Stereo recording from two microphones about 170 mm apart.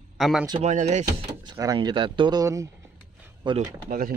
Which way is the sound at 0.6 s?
45° right (ahead or behind).